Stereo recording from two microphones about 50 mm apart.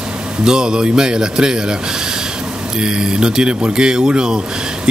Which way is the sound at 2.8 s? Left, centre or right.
Centre.